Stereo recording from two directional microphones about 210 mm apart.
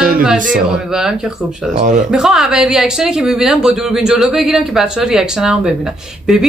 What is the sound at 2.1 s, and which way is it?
Speech, centre (ahead or behind).